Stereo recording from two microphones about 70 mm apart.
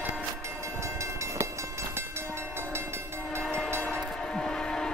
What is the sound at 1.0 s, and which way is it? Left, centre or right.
Train, right.